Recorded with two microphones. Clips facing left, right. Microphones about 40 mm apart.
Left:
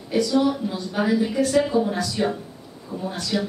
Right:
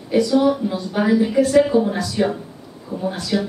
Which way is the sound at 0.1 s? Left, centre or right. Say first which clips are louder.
Right 4 dB; centre.